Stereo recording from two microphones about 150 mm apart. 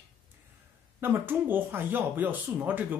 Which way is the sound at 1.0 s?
15° right (ahead or behind).